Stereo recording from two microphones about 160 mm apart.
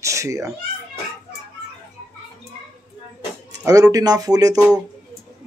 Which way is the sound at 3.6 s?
20° right (ahead or behind).